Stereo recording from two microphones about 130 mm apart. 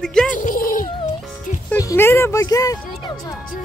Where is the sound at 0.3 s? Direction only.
90° left.